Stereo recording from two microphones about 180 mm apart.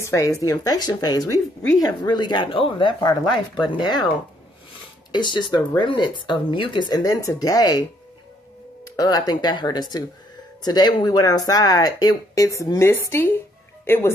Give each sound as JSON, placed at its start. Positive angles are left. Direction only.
{"t": 0.0, "sound": "speech", "side_deg": 15}
{"t": 5.1, "sound": "speech", "side_deg": 25}
{"t": 8.9, "sound": "speech", "side_deg": 20}